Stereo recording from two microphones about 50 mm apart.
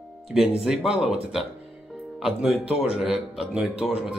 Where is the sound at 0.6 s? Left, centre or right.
Centre.